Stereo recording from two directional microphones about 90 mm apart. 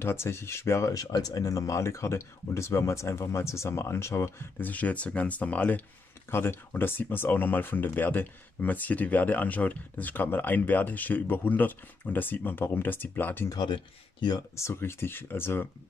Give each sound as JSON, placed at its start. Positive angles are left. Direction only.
{"t": 0.0, "sound": "speech", "side_deg": 30}
{"t": 13.5, "sound": "speech", "side_deg": 50}
{"t": 14.5, "sound": "speech", "side_deg": 30}